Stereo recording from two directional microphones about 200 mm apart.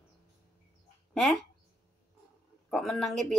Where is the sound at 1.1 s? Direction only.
Centre (ahead or behind).